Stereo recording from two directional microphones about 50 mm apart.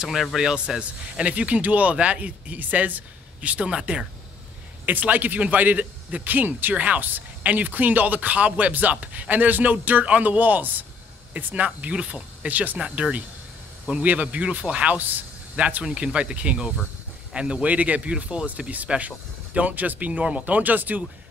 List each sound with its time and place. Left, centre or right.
0.1 s a man's voice: centre
0.4 s speech: centre; by 3.0 s right
3.3 s speech: right
4.8 s speech: right
15.0 s a sound: right
15.8 s speech: right